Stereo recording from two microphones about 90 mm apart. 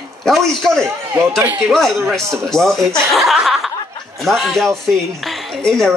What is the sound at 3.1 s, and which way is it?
Chuckle, 5° right (ahead or behind).